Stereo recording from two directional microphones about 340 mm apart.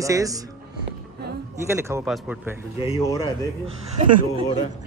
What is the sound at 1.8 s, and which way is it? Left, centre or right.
Speech, centre.